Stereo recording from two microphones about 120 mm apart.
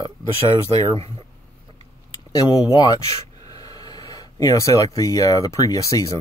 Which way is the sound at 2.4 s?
30° left (ahead or behind).